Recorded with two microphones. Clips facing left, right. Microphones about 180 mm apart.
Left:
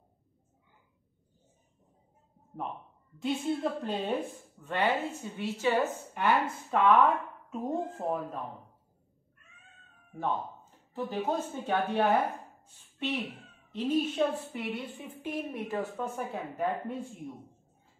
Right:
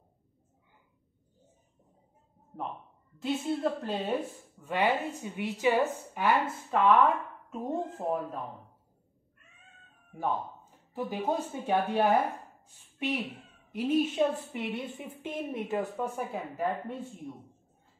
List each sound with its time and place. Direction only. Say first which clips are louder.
3.2 s a woman's voice: even; centre (ahead or behind)
10.1 s speech: right 1 dB; 10° right (ahead or behind)
13.7 s a woman's voice: right 2 dB; 15° right (ahead or behind)
16.2 s a woman's voice: even; centre (ahead or behind)